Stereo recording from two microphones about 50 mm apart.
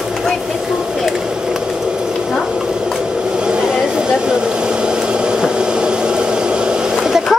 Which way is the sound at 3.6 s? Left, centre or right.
Centre.